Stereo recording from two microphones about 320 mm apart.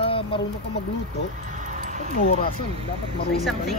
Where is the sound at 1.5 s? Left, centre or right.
Right.